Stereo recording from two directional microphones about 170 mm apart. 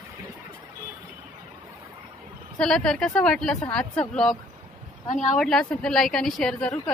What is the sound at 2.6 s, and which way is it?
A woman's voice, 5° left (ahead or behind).